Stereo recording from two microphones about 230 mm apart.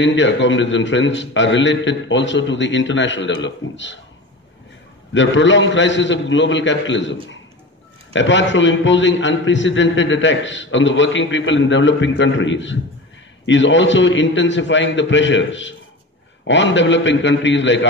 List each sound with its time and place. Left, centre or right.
0.0 s a man's voice: left
5.1 s a man's voice: left